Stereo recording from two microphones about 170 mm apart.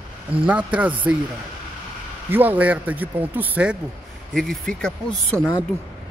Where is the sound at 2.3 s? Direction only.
10° right (ahead or behind).